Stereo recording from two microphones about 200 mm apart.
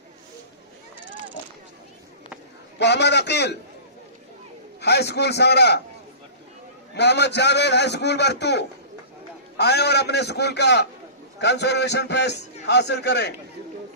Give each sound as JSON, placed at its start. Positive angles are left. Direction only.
{"t": 2.8, "sound": "a man's voice", "side_deg": 60}
{"t": 4.7, "sound": "a man's voice", "side_deg": 55}
{"t": 7.0, "sound": "a man's voice", "side_deg": 60}